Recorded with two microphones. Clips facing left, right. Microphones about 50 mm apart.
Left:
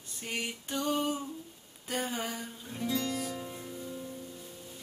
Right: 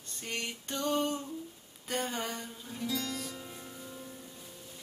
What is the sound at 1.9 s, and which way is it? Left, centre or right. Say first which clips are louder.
Speech: even; centre.